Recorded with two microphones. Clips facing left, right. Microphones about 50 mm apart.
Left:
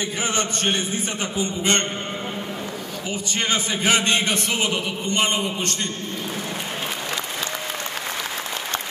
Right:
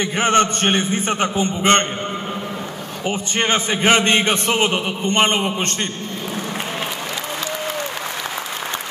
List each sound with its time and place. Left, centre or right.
0.0 s a man's voice: right
3.1 s a man's voice: right